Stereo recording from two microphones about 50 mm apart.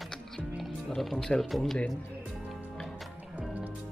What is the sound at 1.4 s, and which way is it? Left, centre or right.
Speech, centre.